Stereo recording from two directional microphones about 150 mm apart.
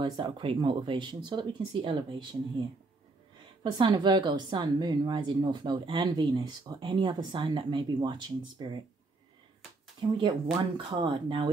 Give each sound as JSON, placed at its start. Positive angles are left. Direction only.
{"t": 0.0, "sound": "a woman's voice", "side_deg": -35}
{"t": 3.6, "sound": "a woman's voice", "side_deg": -30}
{"t": 9.9, "sound": "a woman's voice", "side_deg": -35}